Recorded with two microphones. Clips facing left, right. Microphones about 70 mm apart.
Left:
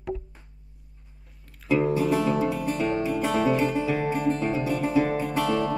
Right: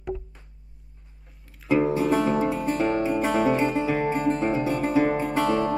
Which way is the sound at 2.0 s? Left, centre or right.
Right.